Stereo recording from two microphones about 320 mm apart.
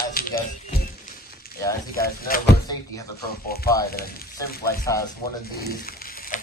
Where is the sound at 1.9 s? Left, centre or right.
Left.